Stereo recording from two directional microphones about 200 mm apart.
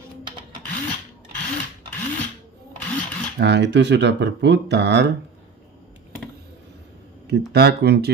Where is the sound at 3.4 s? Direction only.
60° right (ahead or behind).